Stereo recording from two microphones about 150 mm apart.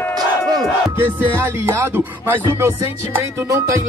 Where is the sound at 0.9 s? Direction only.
15° right (ahead or behind).